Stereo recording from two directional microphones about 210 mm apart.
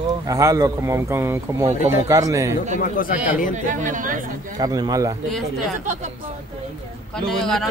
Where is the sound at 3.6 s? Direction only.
35° right (ahead or behind).